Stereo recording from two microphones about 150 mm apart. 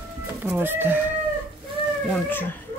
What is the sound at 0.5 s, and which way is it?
Speech, 15° right (ahead or behind).